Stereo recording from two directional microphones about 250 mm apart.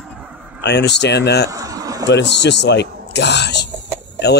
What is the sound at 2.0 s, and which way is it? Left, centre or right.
Speech, left.